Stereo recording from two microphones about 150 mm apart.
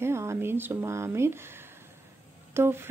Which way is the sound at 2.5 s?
15° right (ahead or behind).